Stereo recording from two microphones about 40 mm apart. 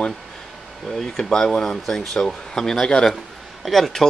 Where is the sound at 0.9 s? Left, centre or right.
Centre.